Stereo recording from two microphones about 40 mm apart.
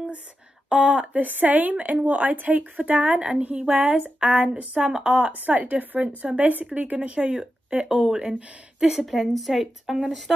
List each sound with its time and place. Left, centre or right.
0.7 s a sound: right
1.1 s speech: right
4.2 s a sound: right
5.3 s speech: right
8.0 s speech: centre
9.0 s speech: centre